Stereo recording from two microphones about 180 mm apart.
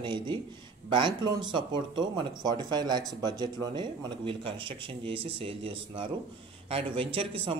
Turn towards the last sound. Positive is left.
turn(degrees=-30)  # may be behind; listen again after turning